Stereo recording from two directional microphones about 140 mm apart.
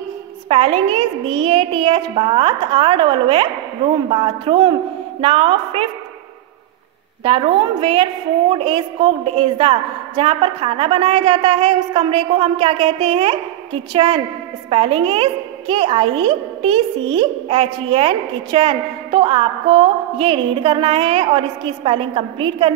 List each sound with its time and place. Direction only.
0.5 s a woman's voice: 40° right (ahead or behind)
7.2 s a woman's voice: 40° right (ahead or behind)